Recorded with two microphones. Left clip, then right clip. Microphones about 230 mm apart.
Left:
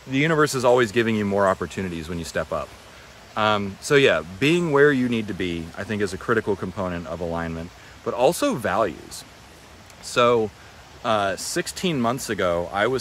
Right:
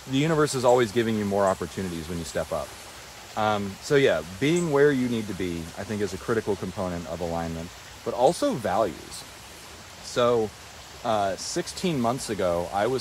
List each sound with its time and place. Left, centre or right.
0.3 s speech: centre
10.1 s speech: left